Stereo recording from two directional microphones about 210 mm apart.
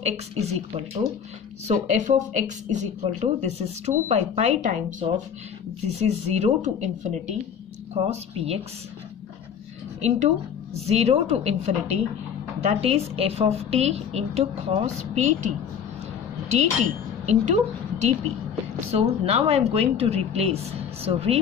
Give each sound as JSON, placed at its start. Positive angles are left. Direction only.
{"t": 0.0, "sound": "a woman's voice", "side_deg": -30}
{"t": 10.0, "sound": "a woman's voice", "side_deg": -35}
{"t": 16.5, "sound": "a woman's voice", "side_deg": -35}